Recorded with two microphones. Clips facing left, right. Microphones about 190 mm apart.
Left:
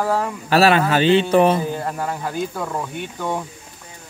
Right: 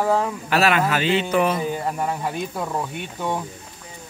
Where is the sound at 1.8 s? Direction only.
5° right (ahead or behind).